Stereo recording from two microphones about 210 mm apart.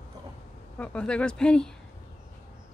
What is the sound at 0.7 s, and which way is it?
Speech, 5° left (ahead or behind).